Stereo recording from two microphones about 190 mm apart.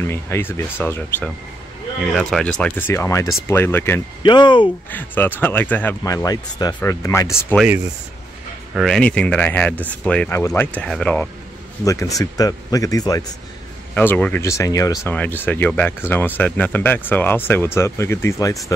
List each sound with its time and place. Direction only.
0.0 s speech: 15° left (ahead or behind)
4.2 s speech: 25° left (ahead or behind)
4.9 s speech: 10° left (ahead or behind)
7.5 s speech: 5° right (ahead or behind)
11.8 s speech: 15° left (ahead or behind)